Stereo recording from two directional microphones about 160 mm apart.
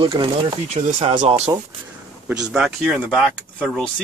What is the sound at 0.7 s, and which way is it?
Speech, 40° right (ahead or behind).